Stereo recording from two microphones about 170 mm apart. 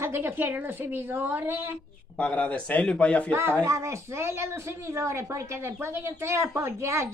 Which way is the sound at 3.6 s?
15° right (ahead or behind).